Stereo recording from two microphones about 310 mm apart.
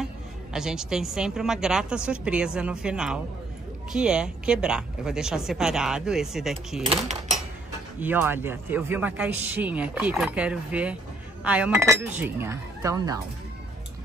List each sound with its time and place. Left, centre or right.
0.0 s a woman's voice: centre
6.8 s speech: centre
8.0 s speech: centre